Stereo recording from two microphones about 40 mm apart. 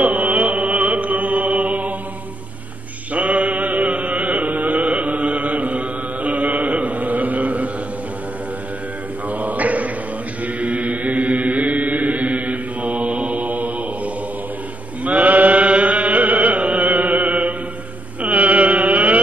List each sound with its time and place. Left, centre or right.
0.0 s music: right
3.1 s chant: right
9.3 s mantra: right
10.4 s chant: right
15.0 s music: right
18.2 s mantra: right